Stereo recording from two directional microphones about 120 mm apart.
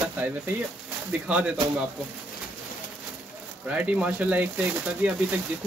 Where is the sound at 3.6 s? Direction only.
10° right (ahead or behind).